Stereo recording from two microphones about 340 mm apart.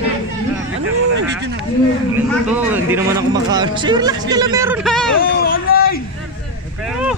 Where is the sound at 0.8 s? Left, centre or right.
Right.